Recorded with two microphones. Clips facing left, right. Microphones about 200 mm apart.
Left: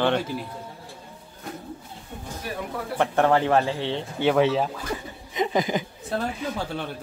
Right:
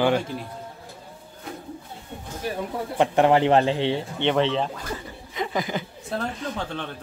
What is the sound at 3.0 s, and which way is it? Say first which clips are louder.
Speech: right 2 dB; 15° right (ahead or behind).